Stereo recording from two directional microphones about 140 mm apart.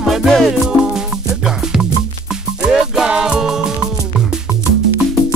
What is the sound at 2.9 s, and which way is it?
Music, 5° right (ahead or behind).